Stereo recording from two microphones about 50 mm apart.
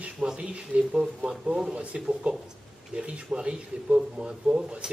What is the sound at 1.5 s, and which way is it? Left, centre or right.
Speech, centre.